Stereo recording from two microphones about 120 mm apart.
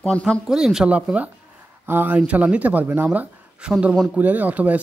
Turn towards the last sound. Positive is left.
turn(degrees=-15)  # may be behind; listen again after turning